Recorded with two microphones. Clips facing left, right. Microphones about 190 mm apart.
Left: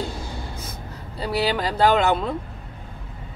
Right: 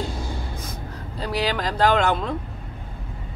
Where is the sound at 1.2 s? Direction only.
10° left (ahead or behind).